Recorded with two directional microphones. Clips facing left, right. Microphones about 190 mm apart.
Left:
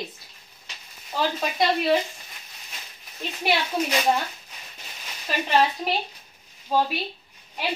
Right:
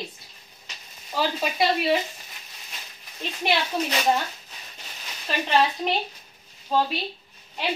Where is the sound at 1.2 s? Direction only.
5° right (ahead or behind).